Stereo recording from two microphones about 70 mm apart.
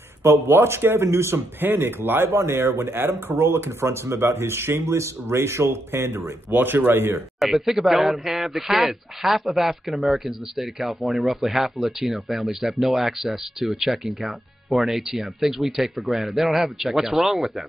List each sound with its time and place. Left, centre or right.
0.2 s speech: right
7.3 s speech: centre